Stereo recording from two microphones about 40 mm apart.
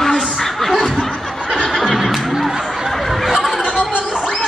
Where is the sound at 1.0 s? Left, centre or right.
Centre.